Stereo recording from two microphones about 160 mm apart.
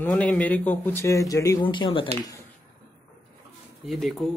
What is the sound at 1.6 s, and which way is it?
Speech, 30° left (ahead or behind).